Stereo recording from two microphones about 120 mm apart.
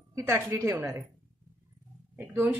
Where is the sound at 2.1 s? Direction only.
15° right (ahead or behind).